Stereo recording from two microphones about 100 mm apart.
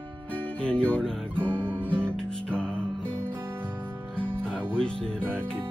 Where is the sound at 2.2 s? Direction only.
10° left (ahead or behind).